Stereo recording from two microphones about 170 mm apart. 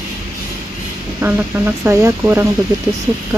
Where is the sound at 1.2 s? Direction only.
15° right (ahead or behind).